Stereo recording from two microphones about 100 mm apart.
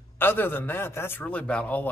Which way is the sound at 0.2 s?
20° left (ahead or behind).